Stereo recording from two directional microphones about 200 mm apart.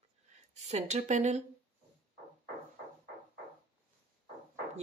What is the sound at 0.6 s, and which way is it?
Speech, 35° right (ahead or behind).